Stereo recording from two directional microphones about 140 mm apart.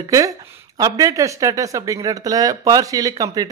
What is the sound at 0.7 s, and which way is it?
A man's voice, 25° right (ahead or behind).